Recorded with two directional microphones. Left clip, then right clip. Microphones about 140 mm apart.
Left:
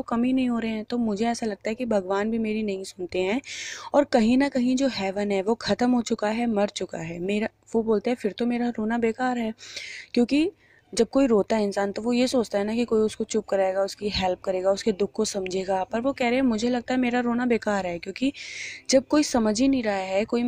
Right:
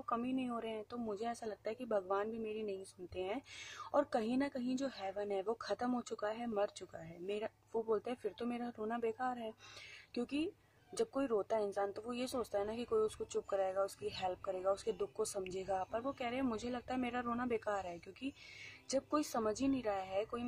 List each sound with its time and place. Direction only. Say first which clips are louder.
0.1 s speech: left 13 dB; 40° left (ahead or behind)
13.5 s speech: left 13 dB; 45° left (ahead or behind)